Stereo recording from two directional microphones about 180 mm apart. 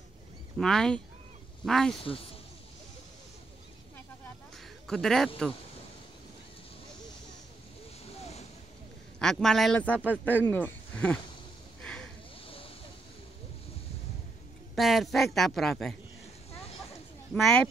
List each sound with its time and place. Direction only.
0.6 s speech: 5° left (ahead or behind)
2.0 s speech: 30° left (ahead or behind)
4.8 s speech: centre (ahead or behind)
9.2 s speech: centre (ahead or behind)
12.4 s vehicle: 30° left (ahead or behind)
14.8 s speech: centre (ahead or behind)
17.3 s speech: 5° left (ahead or behind)